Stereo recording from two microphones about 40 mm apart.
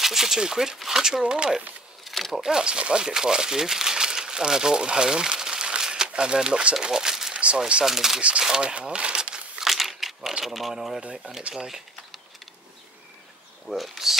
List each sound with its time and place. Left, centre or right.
0.0 s speech: centre
2.0 s a sound: centre
2.4 s speech: centre
7.3 s speech: right
7.8 s speech: centre
8.2 s speech: right
9.6 s crumpling: centre
10.4 s speech: centre
13.7 s speech: centre